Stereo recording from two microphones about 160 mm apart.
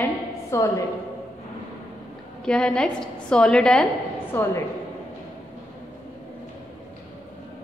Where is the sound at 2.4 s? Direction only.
5° left (ahead or behind).